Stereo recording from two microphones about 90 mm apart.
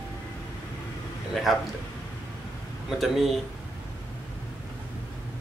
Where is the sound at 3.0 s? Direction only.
Centre (ahead or behind).